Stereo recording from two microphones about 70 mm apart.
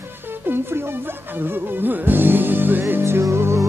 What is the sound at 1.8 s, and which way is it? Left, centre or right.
Music, right.